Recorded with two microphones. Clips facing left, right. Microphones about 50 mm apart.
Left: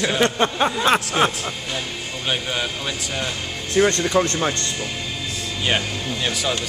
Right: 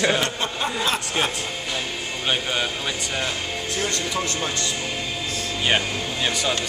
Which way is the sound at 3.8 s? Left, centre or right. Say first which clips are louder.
Left 10 dB; left.